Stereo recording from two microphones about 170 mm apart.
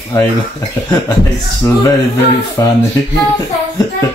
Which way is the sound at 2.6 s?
20° left (ahead or behind).